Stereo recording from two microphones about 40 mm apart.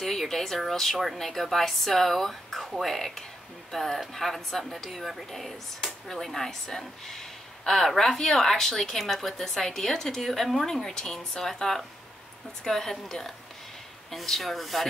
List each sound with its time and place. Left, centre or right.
0.0 s speech: centre